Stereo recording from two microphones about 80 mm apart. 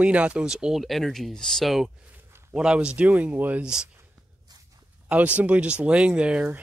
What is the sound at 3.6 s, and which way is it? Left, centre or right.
Speech, centre.